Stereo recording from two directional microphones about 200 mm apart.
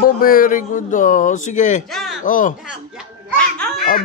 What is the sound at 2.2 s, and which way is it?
Speech, 40° left (ahead or behind).